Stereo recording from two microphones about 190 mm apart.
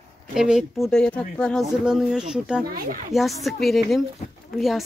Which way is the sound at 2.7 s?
45° right (ahead or behind).